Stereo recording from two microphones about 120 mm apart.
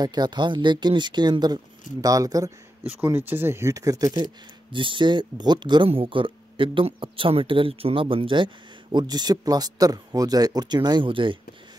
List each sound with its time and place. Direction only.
0.0 s speech: 35° right (ahead or behind)
3.0 s speech: 15° right (ahead or behind); by 8.5 s 45° right (ahead or behind)
8.9 s speech: 35° right (ahead or behind)